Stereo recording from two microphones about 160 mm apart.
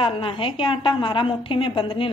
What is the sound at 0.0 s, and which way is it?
A woman's voice, 35° left (ahead or behind).